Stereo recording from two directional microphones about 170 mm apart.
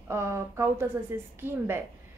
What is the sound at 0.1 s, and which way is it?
A woman's voice, 15° right (ahead or behind).